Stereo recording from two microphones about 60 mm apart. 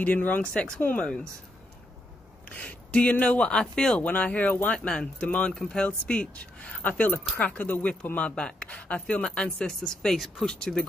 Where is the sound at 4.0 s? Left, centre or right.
Left.